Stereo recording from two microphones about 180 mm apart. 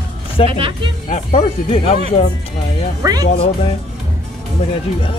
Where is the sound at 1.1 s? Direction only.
40° left (ahead or behind).